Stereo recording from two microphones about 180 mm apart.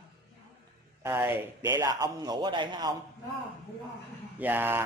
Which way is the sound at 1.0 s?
10° right (ahead or behind).